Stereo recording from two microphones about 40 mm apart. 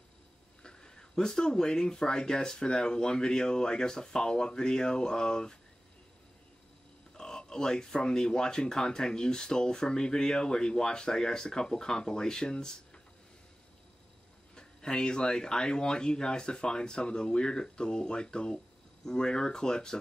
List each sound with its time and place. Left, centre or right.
0.6 s speech: left
7.2 s speech: centre
14.5 s speech: centre